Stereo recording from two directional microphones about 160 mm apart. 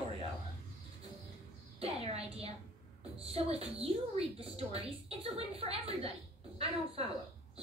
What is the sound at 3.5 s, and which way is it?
A woman's voice, 40° right (ahead or behind).